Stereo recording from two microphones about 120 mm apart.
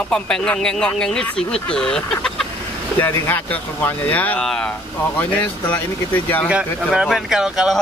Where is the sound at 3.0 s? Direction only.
15° left (ahead or behind).